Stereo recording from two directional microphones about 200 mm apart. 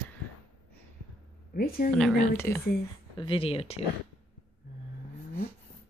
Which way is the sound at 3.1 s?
25° left (ahead or behind).